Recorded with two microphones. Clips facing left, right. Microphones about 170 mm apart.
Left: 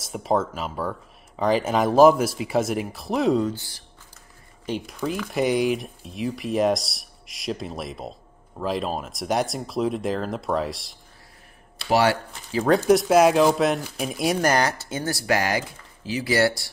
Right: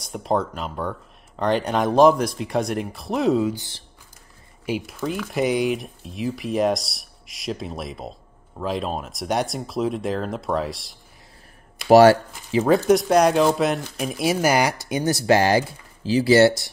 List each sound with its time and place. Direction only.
0.0 s speech: centre (ahead or behind)
3.5 s speech: 20° right (ahead or behind)
4.6 s speech: 5° right (ahead or behind)
11.9 s speech: 45° right (ahead or behind)
12.6 s speech: centre (ahead or behind); by 16.7 s 20° right (ahead or behind)